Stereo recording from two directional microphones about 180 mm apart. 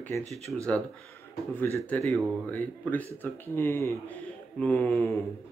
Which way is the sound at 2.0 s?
Centre (ahead or behind).